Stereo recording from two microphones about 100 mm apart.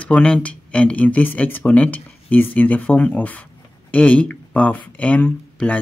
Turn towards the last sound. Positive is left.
turn(degrees=15)  # may be behind; listen again after turning